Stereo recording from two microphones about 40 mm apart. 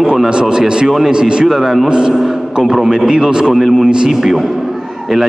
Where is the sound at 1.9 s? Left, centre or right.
Right.